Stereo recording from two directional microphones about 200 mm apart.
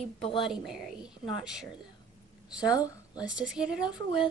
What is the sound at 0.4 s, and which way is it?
A woman's voice, centre (ahead or behind).